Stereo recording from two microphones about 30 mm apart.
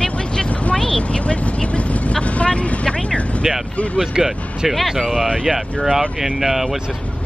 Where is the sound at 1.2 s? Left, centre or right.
Left.